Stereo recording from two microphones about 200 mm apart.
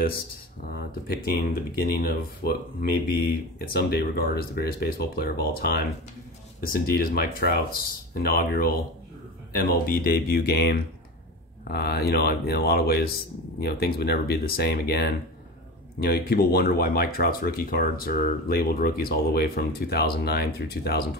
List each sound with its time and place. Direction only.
0.7 s speech: 50° left (ahead or behind)